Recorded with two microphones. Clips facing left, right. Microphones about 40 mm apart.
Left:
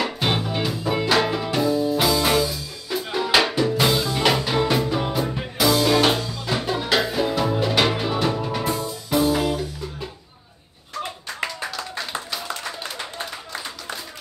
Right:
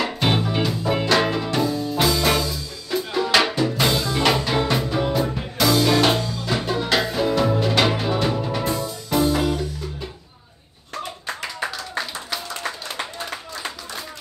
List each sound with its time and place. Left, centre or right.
0.0 s music: centre